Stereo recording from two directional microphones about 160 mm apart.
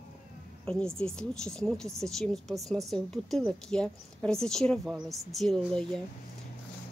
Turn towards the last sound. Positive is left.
turn(degrees=0)  # may be behind; listen again after turning